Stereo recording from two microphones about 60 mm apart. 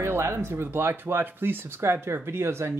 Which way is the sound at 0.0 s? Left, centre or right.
Right.